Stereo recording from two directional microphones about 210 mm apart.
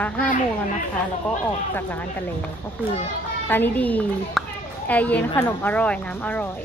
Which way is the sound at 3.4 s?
10° left (ahead or behind).